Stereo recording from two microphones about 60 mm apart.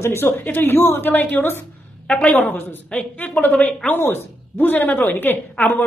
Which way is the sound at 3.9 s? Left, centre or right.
Left.